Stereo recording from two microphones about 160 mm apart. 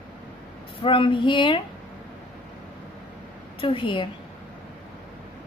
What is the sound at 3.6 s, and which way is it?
Speech, 35° left (ahead or behind).